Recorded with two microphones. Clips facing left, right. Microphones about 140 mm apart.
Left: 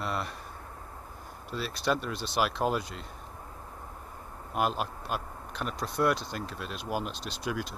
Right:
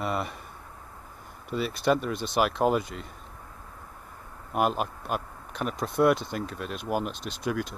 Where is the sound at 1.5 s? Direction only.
60° right (ahead or behind).